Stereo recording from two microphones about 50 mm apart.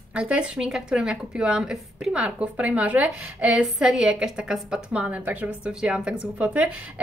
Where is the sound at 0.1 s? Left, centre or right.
Right.